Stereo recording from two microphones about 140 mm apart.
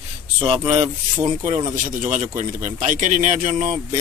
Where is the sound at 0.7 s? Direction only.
20° right (ahead or behind).